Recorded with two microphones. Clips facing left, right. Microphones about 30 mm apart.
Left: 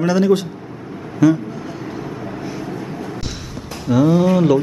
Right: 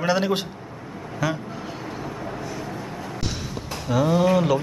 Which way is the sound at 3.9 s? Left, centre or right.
Centre.